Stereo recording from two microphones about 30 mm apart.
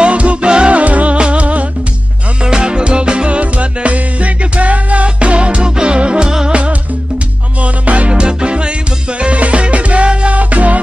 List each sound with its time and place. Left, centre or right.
0.0 s music: right
0.5 s music: right
0.7 s music: right
1.1 s music: right
2.4 s music: right
3.3 s music: right
7.6 s music: right
8.1 s music: right